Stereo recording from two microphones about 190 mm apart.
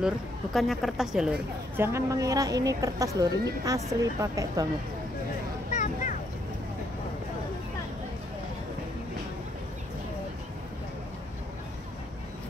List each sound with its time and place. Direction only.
0.0 s speech: centre (ahead or behind); by 4.6 s 15° right (ahead or behind)